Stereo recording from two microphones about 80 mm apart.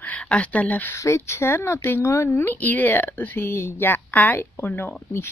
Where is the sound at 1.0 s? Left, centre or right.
Left.